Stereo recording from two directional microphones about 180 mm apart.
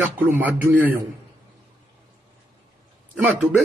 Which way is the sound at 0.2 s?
10° right (ahead or behind).